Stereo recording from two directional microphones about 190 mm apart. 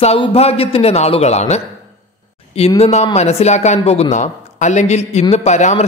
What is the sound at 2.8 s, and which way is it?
A man's voice, 35° left (ahead or behind).